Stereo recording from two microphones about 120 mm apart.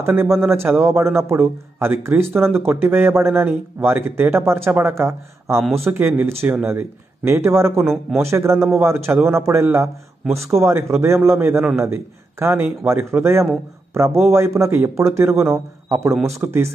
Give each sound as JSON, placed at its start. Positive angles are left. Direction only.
{"t": 0.0, "sound": "speech", "side_deg": -20}
{"t": 7.8, "sound": "speech", "side_deg": 0}
{"t": 8.2, "sound": "speech", "side_deg": -20}
{"t": 16.2, "sound": "speech", "side_deg": 0}